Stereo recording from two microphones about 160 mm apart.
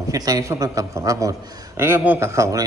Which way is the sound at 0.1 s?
20° right (ahead or behind).